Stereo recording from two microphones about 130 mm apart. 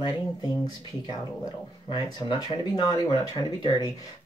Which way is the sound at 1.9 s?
35° left (ahead or behind).